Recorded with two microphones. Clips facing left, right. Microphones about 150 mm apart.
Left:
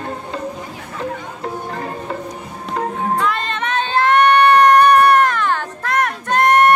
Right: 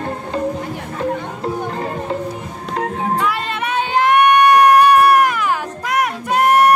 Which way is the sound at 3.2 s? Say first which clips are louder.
Even; 10° right (ahead or behind).